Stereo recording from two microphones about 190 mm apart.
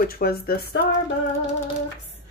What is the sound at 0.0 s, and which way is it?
Speech, 50° left (ahead or behind).